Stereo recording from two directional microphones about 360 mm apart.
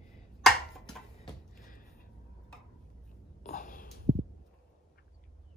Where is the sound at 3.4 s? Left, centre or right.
Left.